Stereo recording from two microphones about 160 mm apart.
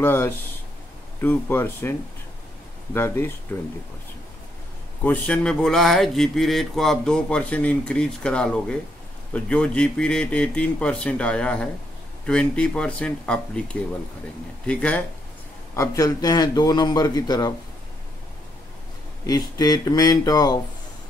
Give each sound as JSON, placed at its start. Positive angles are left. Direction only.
{"t": 0.0, "sound": "speech", "side_deg": 15}
{"t": 5.0, "sound": "speech", "side_deg": 10}
{"t": 15.7, "sound": "a man's voice", "side_deg": 20}
{"t": 19.2, "sound": "a man's voice", "side_deg": 25}